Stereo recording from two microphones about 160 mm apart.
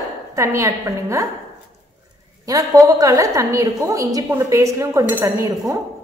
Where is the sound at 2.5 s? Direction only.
20° right (ahead or behind).